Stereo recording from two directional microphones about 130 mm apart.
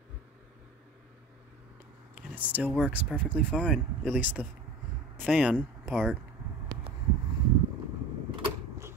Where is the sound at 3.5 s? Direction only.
5° left (ahead or behind).